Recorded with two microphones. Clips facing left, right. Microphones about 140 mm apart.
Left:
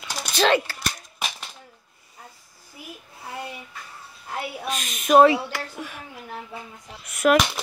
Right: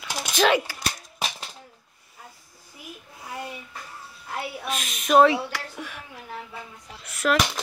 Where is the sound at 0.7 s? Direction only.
10° right (ahead or behind).